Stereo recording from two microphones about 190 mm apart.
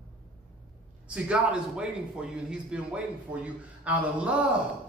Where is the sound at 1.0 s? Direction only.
5° right (ahead or behind).